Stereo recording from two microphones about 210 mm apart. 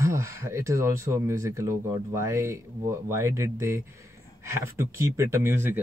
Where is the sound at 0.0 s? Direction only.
15° right (ahead or behind).